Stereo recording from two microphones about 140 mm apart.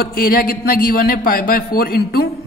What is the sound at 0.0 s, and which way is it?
A woman's voice, 90° left.